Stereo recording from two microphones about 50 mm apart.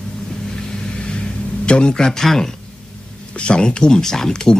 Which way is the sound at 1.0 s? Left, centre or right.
Centre.